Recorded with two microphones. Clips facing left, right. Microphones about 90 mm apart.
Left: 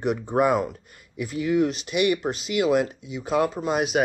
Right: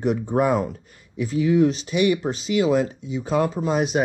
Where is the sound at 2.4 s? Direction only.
5° left (ahead or behind).